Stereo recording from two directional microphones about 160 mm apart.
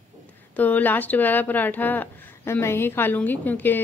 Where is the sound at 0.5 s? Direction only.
10° left (ahead or behind).